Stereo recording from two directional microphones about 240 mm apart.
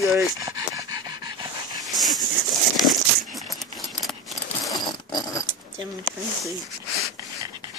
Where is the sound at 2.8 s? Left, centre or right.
Centre.